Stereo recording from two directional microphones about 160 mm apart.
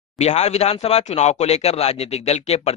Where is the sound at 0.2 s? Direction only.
45° left (ahead or behind).